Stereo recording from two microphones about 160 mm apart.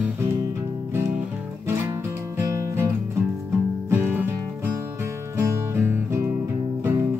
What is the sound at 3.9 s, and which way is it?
Music, 15° right (ahead or behind).